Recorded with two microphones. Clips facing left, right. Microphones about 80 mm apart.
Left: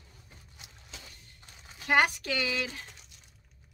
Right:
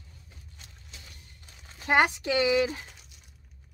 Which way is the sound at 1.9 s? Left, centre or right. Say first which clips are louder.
Right 2 dB; right.